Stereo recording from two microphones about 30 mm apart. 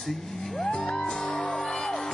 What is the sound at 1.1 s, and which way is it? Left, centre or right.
Music, left.